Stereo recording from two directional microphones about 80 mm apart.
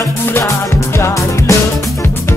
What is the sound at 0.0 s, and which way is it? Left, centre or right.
Music, left.